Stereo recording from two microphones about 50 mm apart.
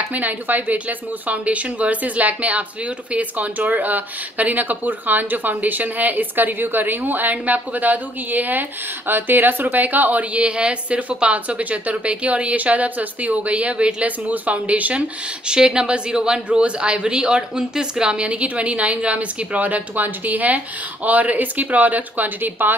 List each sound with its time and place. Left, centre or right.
0.1 s speech: right